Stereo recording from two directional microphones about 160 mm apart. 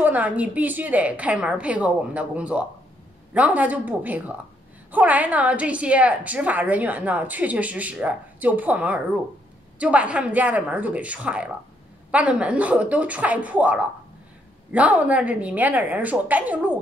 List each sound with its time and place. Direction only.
0.0 s a woman's voice: 10° right (ahead or behind)